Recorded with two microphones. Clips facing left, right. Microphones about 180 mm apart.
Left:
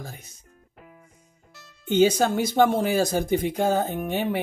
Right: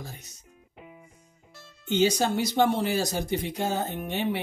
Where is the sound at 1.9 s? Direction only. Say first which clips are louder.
Left 4 dB; 50° left (ahead or behind).